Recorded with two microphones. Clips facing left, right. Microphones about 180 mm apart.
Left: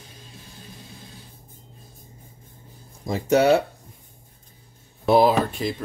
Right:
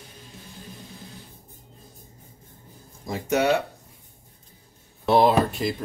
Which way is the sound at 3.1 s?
35° left (ahead or behind).